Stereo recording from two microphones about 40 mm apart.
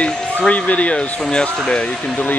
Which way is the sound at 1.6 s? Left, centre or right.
Left.